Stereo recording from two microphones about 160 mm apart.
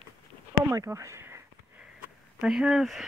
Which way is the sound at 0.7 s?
20° right (ahead or behind).